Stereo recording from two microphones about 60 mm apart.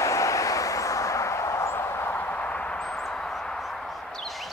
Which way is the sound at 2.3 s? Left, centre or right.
Left.